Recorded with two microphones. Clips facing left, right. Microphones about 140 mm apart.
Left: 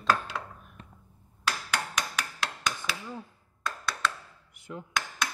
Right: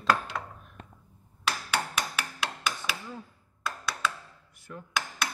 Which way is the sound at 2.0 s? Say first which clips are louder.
Even; 10° right (ahead or behind).